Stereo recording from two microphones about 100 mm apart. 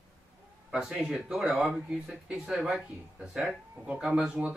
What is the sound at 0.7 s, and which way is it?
Speech, 5° right (ahead or behind).